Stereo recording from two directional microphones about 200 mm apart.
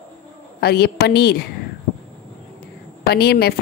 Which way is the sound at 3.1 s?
55° left (ahead or behind).